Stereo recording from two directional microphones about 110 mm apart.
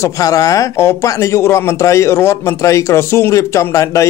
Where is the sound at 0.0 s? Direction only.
30° left (ahead or behind).